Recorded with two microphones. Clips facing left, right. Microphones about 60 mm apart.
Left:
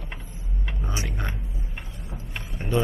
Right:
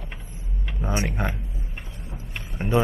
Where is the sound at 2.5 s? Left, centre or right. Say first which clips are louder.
Right 3 dB; centre.